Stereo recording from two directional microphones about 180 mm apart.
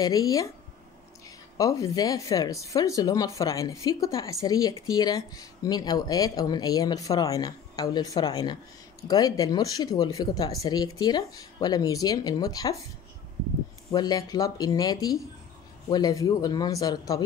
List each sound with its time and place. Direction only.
0.0 s speech: 20° left (ahead or behind)
1.6 s speech: 20° left (ahead or behind)
13.9 s speech: 20° left (ahead or behind)